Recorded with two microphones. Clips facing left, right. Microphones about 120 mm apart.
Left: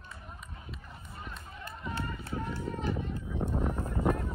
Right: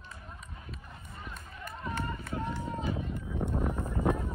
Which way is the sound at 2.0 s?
25° right (ahead or behind).